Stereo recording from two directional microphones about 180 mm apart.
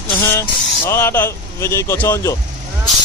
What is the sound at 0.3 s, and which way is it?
Speech, 15° left (ahead or behind).